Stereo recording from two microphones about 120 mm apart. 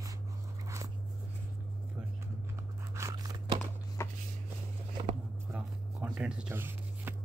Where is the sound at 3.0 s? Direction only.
30° right (ahead or behind).